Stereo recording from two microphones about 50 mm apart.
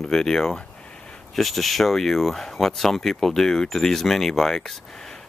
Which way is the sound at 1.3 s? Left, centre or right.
Centre.